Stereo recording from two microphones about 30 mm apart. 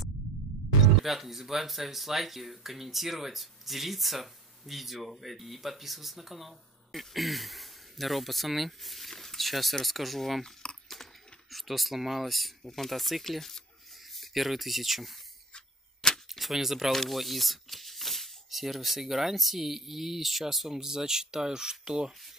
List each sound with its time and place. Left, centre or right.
1.0 s speech: centre
10.6 s chewing: left
11.5 s speech: centre
13.4 s speech: centre
14.1 s speech: centre
15.5 s a sound: centre
16.3 s speech: centre